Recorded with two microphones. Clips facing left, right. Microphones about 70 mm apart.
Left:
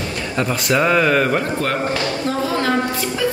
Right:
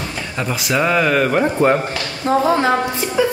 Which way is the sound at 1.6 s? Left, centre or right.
Right.